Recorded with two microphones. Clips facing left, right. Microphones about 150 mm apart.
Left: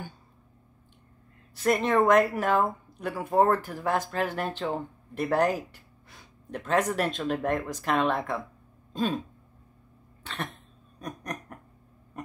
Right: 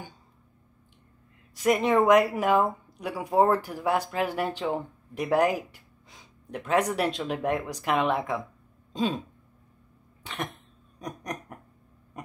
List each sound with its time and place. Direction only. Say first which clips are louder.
1.5 s speech: right 2 dB; 15° right (ahead or behind)
10.2 s cough: right 1 dB; 15° right (ahead or behind)
11.0 s a sound: right 1 dB; 15° right (ahead or behind)